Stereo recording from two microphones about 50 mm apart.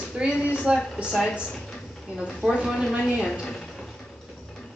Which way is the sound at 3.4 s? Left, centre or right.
Centre.